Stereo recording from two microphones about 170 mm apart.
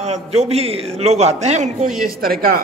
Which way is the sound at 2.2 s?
60° right (ahead or behind).